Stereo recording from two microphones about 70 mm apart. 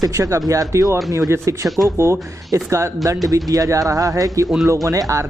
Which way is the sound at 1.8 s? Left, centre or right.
Right.